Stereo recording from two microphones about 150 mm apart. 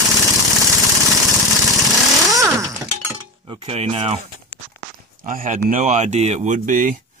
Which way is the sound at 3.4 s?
35° right (ahead or behind).